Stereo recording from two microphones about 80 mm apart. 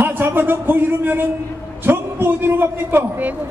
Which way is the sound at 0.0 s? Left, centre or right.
Right.